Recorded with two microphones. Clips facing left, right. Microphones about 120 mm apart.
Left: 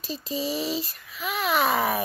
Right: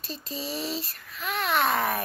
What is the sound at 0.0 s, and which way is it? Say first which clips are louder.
Speech: left 6 dB; centre (ahead or behind).